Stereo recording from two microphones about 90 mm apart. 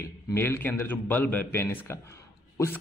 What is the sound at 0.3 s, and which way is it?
Speech, 25° left (ahead or behind).